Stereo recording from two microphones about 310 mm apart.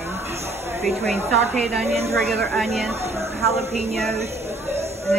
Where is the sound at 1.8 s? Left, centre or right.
Centre.